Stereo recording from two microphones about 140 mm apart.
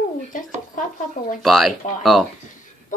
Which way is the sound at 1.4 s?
Centre (ahead or behind).